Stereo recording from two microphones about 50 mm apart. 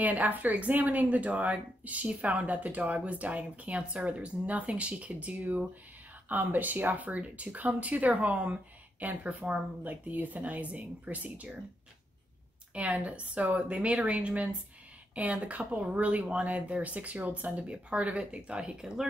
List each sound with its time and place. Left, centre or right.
0.0 s speech: right
12.7 s speech: right